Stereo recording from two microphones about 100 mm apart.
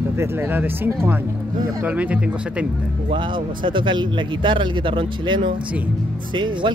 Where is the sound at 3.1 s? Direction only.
55° right (ahead or behind).